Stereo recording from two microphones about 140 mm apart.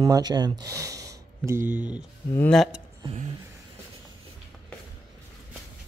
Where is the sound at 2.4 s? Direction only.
Centre (ahead or behind).